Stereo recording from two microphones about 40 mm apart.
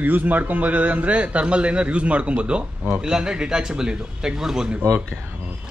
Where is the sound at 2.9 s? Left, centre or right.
Centre.